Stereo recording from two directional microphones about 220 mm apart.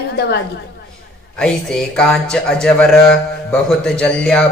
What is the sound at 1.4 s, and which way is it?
A man's voice, 5° left (ahead or behind).